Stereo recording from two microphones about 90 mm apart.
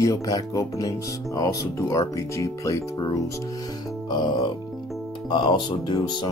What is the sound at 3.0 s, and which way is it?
Speech, 50° left (ahead or behind).